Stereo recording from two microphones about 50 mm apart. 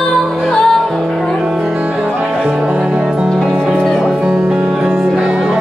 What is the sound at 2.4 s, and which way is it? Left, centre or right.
Music, centre.